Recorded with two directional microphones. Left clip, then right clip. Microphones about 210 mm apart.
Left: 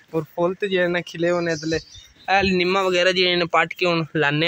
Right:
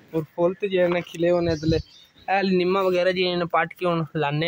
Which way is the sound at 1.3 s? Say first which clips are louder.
Even; 15° right (ahead or behind).